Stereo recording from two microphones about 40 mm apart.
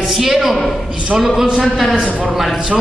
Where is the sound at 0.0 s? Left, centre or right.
Centre.